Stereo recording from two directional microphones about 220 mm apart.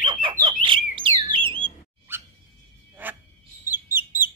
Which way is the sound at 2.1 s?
10° right (ahead or behind).